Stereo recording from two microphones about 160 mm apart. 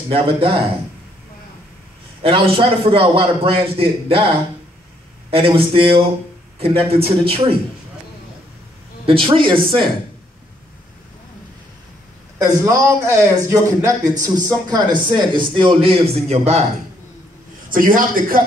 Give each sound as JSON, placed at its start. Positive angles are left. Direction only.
{"t": 0.1, "sound": "a man's voice", "side_deg": -35}
{"t": 2.2, "sound": "a man's voice", "side_deg": -35}
{"t": 5.3, "sound": "a man's voice", "side_deg": -35}
{"t": 9.0, "sound": "a man's voice", "side_deg": -35}
{"t": 12.4, "sound": "a man's voice", "side_deg": -20}
{"t": 17.6, "sound": "a man's voice", "side_deg": -60}